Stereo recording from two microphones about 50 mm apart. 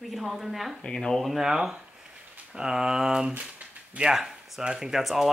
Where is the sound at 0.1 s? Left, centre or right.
Centre.